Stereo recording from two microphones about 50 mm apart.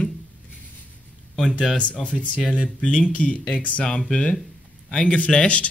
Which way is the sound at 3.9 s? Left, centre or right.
Centre.